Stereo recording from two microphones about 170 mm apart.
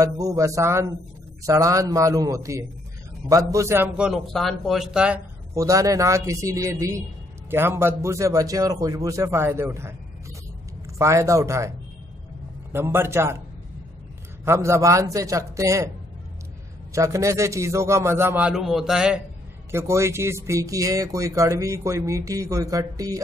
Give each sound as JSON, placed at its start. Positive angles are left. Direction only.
{"t": 0.0, "sound": "a man's voice", "side_deg": -20}
{"t": 5.5, "sound": "a man's voice", "side_deg": -20}
{"t": 11.0, "sound": "a man's voice", "side_deg": -15}
{"t": 12.7, "sound": "a man's voice", "side_deg": -15}
{"t": 14.4, "sound": "speech", "side_deg": -15}
{"t": 16.9, "sound": "a man's voice", "side_deg": -20}
{"t": 19.7, "sound": "speech", "side_deg": -15}